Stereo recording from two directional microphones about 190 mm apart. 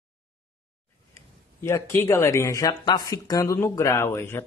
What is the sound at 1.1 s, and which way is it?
A man's voice, 15° left (ahead or behind).